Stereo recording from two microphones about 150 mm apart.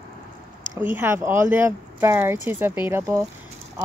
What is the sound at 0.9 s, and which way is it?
Speech, 15° right (ahead or behind).